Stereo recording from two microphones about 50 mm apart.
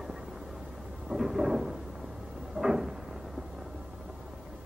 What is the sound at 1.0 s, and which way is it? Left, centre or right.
Thunder, centre.